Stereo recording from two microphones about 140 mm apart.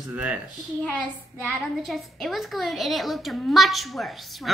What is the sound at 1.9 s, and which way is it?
A child's voice, centre (ahead or behind).